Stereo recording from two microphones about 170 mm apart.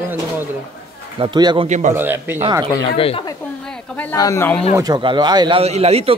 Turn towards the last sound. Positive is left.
turn(degrees=-35)  # may be behind; listen again after turning